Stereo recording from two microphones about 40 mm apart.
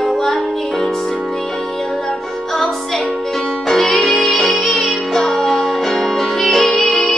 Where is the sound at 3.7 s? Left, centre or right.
Centre.